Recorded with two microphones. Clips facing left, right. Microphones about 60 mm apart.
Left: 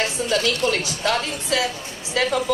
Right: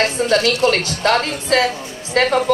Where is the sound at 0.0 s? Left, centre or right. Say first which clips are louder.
Right 6 dB; right.